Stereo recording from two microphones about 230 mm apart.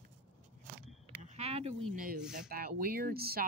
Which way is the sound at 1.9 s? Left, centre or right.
Right.